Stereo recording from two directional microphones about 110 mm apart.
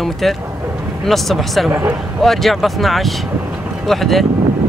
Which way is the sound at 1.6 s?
15° right (ahead or behind).